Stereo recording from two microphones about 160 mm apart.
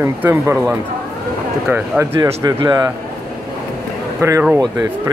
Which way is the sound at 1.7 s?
20° right (ahead or behind).